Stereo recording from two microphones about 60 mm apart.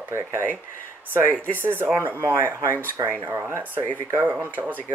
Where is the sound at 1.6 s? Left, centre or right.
Right.